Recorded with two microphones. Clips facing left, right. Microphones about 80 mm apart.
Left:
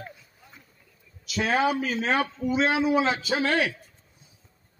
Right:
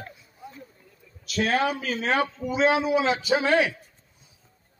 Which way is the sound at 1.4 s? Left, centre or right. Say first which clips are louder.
Left 1 dB; centre.